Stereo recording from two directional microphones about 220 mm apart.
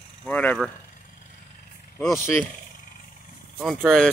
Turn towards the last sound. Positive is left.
turn(degrees=0)  # may be behind; listen again after turning